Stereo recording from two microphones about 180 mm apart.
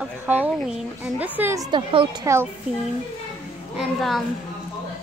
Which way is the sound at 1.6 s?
25° right (ahead or behind).